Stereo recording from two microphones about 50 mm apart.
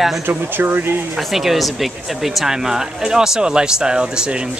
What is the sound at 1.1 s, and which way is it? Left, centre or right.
Speech, centre.